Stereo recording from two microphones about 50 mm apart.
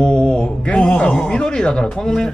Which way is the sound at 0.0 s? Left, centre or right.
Centre.